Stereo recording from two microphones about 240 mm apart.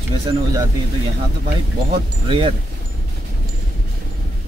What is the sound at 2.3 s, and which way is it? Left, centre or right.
Speech, right.